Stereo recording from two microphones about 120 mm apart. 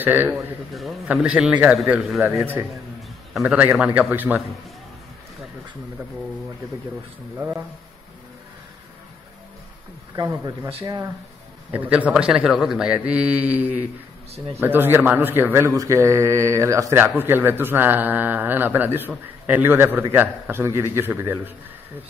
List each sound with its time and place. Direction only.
0.0 s a man's voice: 15° right (ahead or behind)
2.2 s a man's voice: 15° right (ahead or behind)
3.3 s a man's voice: 5° right (ahead or behind)
7.3 s speech: 20° right (ahead or behind)
10.1 s speech: 30° right (ahead or behind)
11.7 s a man's voice: 15° right (ahead or behind)